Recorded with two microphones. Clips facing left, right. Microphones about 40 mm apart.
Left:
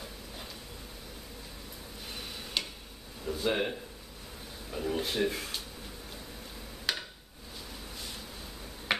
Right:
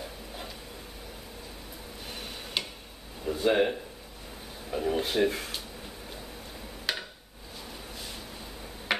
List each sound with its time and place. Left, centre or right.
2.0 s tick-tock: centre
3.3 s speech: centre
6.9 s a sound: centre